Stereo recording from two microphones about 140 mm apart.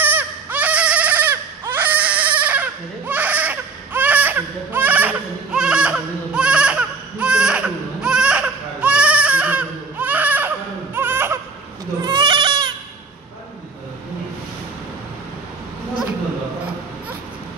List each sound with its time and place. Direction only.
0.0 s a sound: 15° right (ahead or behind)
11.0 s baby cry: 15° right (ahead or behind)
12.0 s goat: 35° right (ahead or behind)